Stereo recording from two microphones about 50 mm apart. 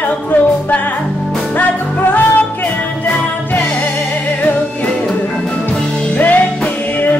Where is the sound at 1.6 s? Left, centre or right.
Left.